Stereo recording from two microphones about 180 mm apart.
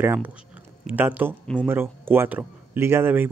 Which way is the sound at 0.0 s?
10° right (ahead or behind).